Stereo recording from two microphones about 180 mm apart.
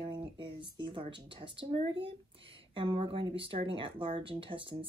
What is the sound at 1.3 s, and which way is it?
Speech, 30° right (ahead or behind).